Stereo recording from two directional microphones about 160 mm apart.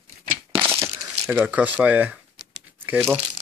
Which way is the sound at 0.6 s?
15° right (ahead or behind).